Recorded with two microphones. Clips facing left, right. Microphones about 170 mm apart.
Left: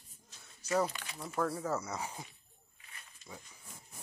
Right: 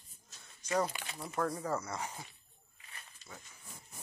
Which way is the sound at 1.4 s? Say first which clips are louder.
Left 1 dB; 5° left (ahead or behind).